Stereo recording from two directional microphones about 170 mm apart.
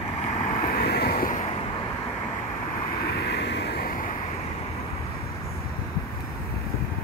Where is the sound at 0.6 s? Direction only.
60° left (ahead or behind).